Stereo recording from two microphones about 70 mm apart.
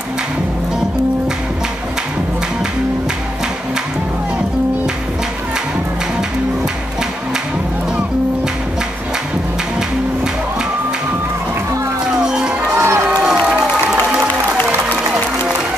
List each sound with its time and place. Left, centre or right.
12.1 s music: centre
12.7 s run: right
13.1 s crowd: centre